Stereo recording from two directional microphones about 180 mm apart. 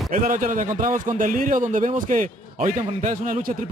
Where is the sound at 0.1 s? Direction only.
50° right (ahead or behind).